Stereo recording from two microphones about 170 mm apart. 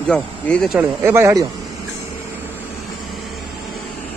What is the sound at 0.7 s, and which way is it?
Speech, 15° right (ahead or behind).